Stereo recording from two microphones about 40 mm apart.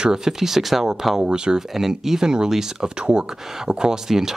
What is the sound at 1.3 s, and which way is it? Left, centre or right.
Speech, right.